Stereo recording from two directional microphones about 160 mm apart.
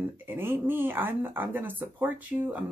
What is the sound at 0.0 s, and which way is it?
Speech, 15° right (ahead or behind).